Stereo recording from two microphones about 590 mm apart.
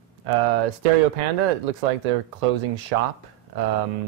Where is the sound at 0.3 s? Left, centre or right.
Right.